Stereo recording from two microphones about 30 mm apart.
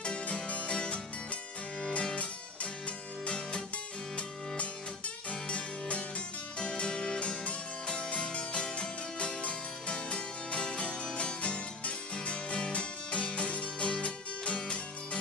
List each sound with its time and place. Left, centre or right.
0.0 s music: left
3.3 s music: left
5.3 s music: left
10.9 s music: left
11.4 s music: left